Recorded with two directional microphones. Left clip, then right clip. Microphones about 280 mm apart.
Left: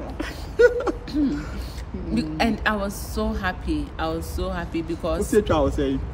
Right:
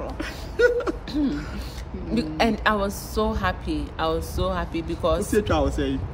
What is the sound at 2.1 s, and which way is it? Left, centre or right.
A woman's voice, centre.